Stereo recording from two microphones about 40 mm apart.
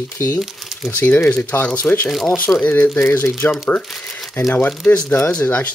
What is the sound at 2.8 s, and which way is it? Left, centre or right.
Speech, left.